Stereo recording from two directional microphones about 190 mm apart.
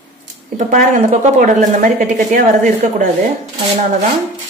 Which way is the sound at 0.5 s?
45° right (ahead or behind).